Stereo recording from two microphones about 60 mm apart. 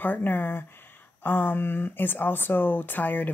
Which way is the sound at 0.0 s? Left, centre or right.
Left.